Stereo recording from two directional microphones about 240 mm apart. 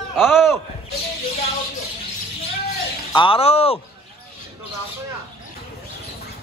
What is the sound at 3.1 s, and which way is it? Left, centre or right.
Speech, left.